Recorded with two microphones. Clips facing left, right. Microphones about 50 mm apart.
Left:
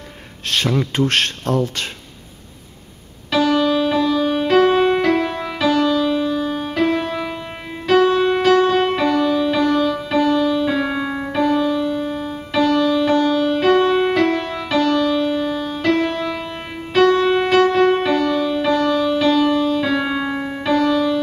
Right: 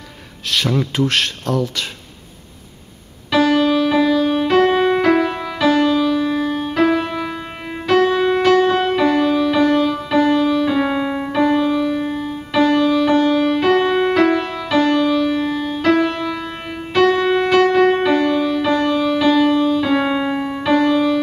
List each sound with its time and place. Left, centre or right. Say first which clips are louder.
0.6 s speech: even; centre
1.4 s speech: left 1 dB; left
3.3 s music: right 2 dB; centre
12.0 s music: right 1 dB; right
12.5 s music: right 2 dB; centre
14.5 s music: right 1 dB; centre
14.8 s music: right 2 dB; centre
15.8 s music: right 2 dB; centre
17.3 s music: right 1 dB; centre
17.6 s music: right 1 dB; centre